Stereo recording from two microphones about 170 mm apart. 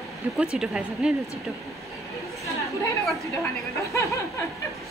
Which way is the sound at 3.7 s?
15° left (ahead or behind).